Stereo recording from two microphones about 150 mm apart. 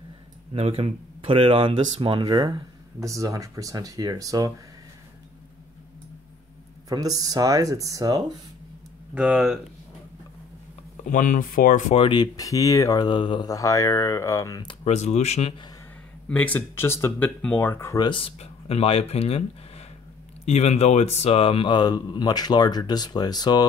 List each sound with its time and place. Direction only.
0.5 s speech: 40° right (ahead or behind); by 4.5 s 25° right (ahead or behind)
6.9 s speech: 25° right (ahead or behind)
9.1 s speech: 5° right (ahead or behind)
11.1 s speech: 60° left (ahead or behind)
11.9 s speech: 35° left (ahead or behind)
14.9 s speech: 50° left (ahead or behind)
16.3 s speech: 10° left (ahead or behind)
18.0 s speech: 35° left (ahead or behind)
20.4 s speech: 45° left (ahead or behind); by 23.6 s 25° left (ahead or behind)